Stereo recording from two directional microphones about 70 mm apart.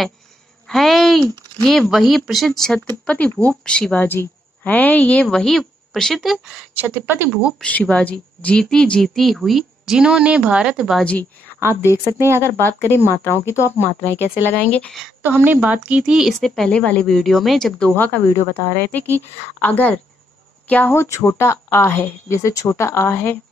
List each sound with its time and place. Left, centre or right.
0.7 s speech: centre
3.1 s speech: centre
4.0 s a woman's voice: left; by 6.3 s centre
6.7 s speech: right
7.6 s speech: centre
12.0 s speech: right
12.4 s a woman's voice: left
15.2 s a woman's voice: right
16.0 s speech: centre
16.3 s speech: centre
16.7 s speech: centre
17.1 s speech: centre
17.9 s a woman's voice: left
20.9 s a woman's voice: left